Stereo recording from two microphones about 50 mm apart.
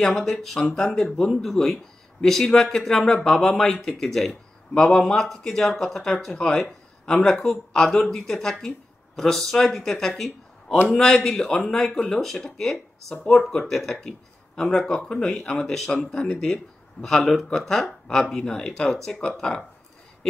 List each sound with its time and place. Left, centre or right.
0.0 s speech: centre
15.9 s speech: centre